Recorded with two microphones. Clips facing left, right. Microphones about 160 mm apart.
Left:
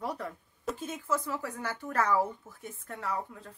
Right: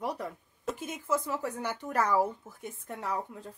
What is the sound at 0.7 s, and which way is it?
Speech, 15° right (ahead or behind).